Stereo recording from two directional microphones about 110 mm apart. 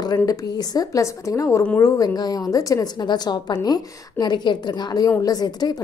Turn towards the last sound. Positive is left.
turn(degrees=35)  # may be behind; listen again after turning